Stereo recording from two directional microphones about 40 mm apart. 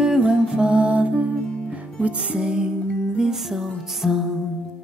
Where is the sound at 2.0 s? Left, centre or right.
Right.